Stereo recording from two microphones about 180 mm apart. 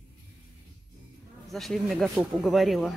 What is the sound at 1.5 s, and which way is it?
Speech, centre (ahead or behind).